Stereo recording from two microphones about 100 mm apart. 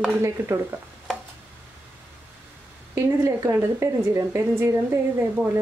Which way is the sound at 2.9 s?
30° right (ahead or behind).